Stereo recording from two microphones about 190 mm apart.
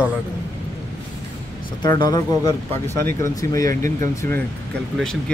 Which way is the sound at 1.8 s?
20° left (ahead or behind).